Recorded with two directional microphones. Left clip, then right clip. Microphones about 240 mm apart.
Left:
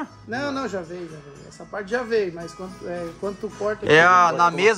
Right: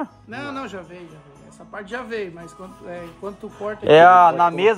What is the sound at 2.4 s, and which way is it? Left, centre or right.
Speech, right.